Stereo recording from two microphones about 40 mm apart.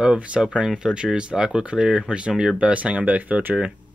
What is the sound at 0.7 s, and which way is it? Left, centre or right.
Speech, right.